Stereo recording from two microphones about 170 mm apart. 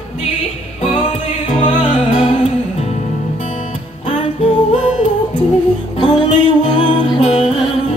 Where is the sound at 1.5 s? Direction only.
35° left (ahead or behind).